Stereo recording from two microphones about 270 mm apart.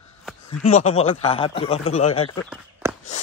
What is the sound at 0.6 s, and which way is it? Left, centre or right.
A man's voice, left.